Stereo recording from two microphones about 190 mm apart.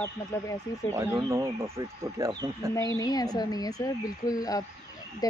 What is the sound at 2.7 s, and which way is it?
Speech, 15° left (ahead or behind).